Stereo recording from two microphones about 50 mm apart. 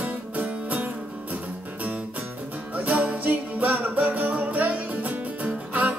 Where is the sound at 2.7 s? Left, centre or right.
Right.